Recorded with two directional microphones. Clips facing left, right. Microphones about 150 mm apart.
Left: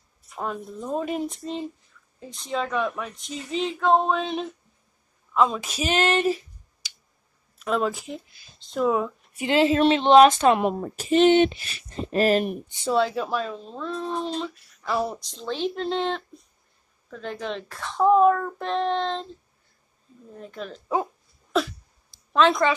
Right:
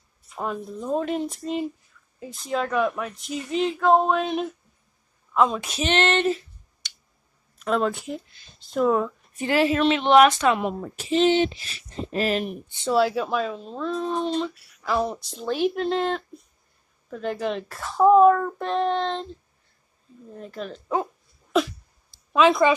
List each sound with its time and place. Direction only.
0.4 s speech: centre (ahead or behind)
9.5 s a woman's voice: 25° left (ahead or behind)
10.8 s speech: 45° left (ahead or behind)
12.6 s speech: 15° left (ahead or behind)
12.9 s speech: 5° right (ahead or behind)
15.2 s speech: 10° right (ahead or behind)
20.3 s a sound: centre (ahead or behind)
22.3 s speech: 10° right (ahead or behind)